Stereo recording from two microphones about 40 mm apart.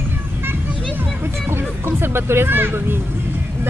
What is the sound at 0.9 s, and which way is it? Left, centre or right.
Speech, right.